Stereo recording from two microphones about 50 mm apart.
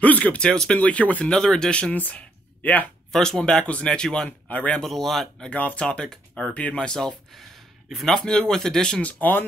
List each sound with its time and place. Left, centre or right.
0.0 s speech: left
0.7 s speech: left
1.3 s speech: centre
2.0 s speech: left
3.1 s speech: centre
4.3 s speech: left
4.8 s speech: centre
5.5 s speech: left; by 8.1 s centre
8.1 s speech: centre
9.0 s speech: left